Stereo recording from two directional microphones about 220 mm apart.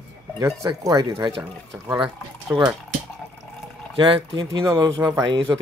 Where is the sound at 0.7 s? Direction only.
20° right (ahead or behind).